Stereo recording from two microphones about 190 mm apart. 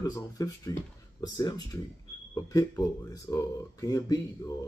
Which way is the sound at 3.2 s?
15° left (ahead or behind).